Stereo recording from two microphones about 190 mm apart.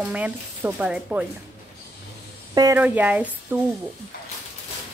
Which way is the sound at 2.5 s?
20° right (ahead or behind).